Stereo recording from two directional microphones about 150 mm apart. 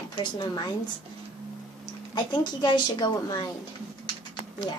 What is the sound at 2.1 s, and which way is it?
A woman's voice, 30° left (ahead or behind).